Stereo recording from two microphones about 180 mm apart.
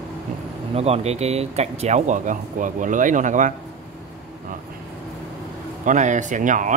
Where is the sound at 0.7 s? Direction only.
35° right (ahead or behind).